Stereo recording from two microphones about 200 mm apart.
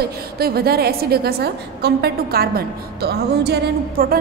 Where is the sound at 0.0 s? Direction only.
50° right (ahead or behind).